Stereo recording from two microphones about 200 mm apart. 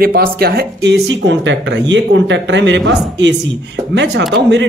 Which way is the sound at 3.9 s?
60° right (ahead or behind).